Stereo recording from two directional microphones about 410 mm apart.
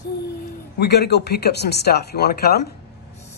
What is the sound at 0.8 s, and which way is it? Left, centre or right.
Speech, left.